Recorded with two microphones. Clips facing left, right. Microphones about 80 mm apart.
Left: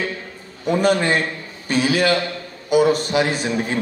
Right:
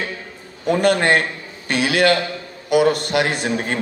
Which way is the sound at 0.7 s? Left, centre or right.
Right.